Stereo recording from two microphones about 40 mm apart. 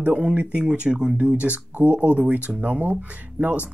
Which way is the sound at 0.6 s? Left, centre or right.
Right.